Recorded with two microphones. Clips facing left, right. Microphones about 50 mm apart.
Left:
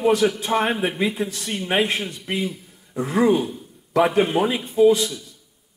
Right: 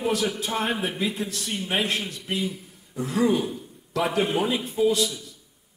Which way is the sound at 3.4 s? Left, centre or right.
Centre.